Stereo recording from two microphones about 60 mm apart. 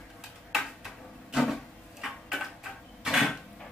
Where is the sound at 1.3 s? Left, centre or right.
Centre.